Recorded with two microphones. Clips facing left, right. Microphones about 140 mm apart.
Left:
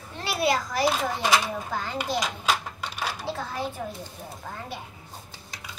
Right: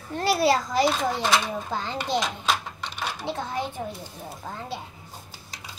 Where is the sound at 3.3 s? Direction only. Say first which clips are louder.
Right 5 dB; 20° right (ahead or behind).